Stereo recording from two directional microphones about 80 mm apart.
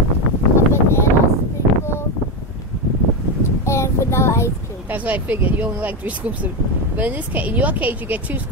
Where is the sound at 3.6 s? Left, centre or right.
Left.